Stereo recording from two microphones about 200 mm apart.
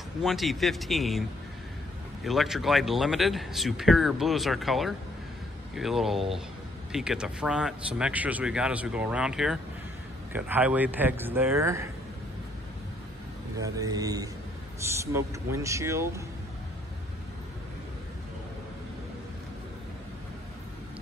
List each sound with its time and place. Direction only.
0.2 s speech: centre (ahead or behind)
2.2 s speech: centre (ahead or behind)
13.6 s speech: 20° right (ahead or behind)